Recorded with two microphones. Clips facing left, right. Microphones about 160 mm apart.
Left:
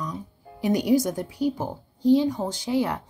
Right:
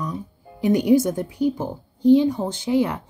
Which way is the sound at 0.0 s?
25° right (ahead or behind).